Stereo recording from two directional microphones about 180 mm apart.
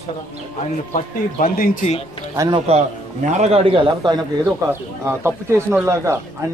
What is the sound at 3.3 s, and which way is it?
Speech, 35° right (ahead or behind).